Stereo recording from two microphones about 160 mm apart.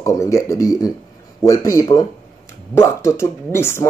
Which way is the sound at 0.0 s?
20° left (ahead or behind).